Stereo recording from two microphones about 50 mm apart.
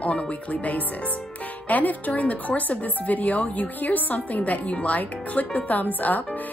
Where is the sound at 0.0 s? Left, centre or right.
Left.